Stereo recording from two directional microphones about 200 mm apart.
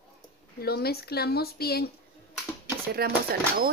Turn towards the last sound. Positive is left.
turn(degrees=-50)  # may be behind; listen again after turning